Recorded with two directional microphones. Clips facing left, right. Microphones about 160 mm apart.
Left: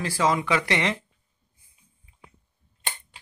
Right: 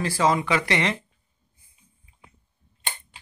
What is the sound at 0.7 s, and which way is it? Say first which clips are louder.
Speech: right 1 dB; 20° left (ahead or behind).